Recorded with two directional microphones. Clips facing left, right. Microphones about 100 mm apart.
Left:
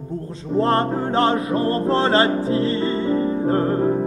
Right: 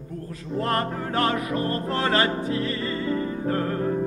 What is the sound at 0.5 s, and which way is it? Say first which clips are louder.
Music: left 7 dB; 30° left (ahead or behind).